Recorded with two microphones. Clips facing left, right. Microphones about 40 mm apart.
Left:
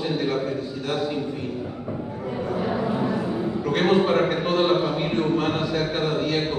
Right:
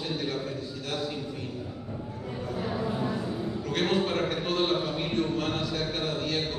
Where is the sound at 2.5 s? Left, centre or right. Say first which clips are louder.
Left 6 dB; left.